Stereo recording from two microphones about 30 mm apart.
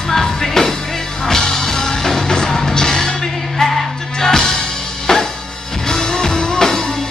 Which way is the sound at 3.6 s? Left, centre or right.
Centre.